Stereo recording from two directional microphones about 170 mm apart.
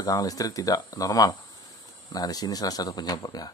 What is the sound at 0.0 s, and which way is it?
Speech, 20° left (ahead or behind).